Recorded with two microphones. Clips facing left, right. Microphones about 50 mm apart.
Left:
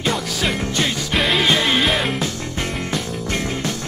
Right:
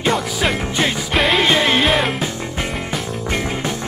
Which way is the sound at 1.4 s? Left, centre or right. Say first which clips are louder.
Right 2 dB; centre.